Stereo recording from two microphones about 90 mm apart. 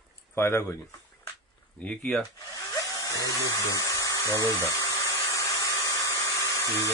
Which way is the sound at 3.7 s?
40° left (ahead or behind).